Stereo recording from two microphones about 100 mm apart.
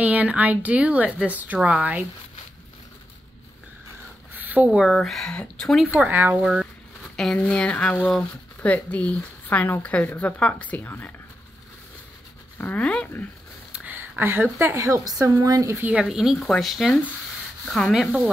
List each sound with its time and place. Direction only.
0.0 s speech: 15° right (ahead or behind)
4.3 s zipper: 15° right (ahead or behind)
4.9 s speech: 5° left (ahead or behind)
5.9 s speech: 15° right (ahead or behind)
6.4 s speech: 5° right (ahead or behind)
7.3 s speech: 10° left (ahead or behind)
12.5 s speech: 15° left (ahead or behind)
13.7 s a sound: 10° right (ahead or behind)
13.9 s a woman's voice: 20° right (ahead or behind)
15.8 s speech: 10° right (ahead or behind)